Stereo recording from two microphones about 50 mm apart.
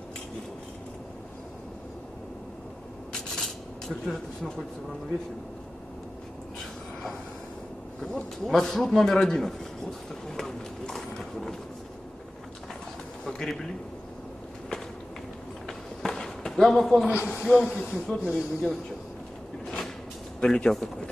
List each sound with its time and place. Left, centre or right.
3.1 s rub: centre
8.0 s a man's voice: centre
13.2 s a man's voice: centre
15.6 s a sound: centre
17.3 s speech: centre
20.3 s a man's voice: centre